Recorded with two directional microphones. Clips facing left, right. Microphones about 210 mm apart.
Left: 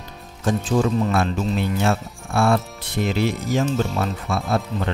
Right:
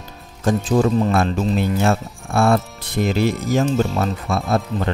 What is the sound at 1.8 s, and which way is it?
Speech, 45° right (ahead or behind).